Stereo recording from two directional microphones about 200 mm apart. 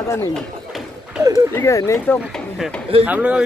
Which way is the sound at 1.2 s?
15° right (ahead or behind).